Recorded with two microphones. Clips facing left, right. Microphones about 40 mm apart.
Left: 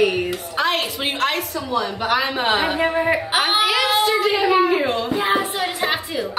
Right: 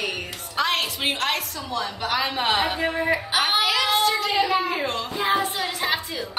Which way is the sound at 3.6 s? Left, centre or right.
Centre.